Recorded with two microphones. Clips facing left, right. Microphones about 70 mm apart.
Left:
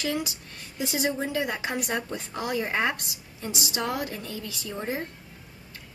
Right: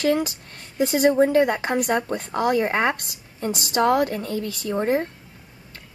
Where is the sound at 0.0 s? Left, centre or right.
Right.